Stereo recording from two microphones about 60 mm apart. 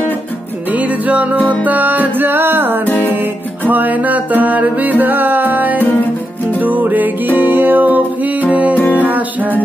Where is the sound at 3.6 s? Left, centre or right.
Right.